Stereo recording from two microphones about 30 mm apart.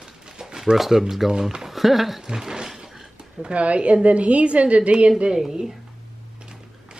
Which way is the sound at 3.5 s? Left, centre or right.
Right.